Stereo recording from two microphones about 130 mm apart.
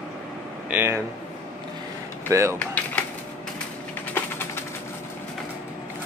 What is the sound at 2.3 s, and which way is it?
Speech, 20° right (ahead or behind).